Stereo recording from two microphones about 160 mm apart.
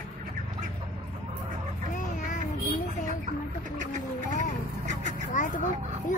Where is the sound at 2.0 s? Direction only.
55° left (ahead or behind).